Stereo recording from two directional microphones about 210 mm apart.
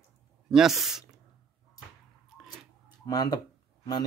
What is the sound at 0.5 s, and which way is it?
Speech, centre (ahead or behind).